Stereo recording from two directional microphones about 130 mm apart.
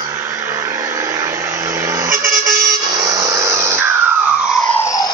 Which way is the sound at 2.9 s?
30° right (ahead or behind).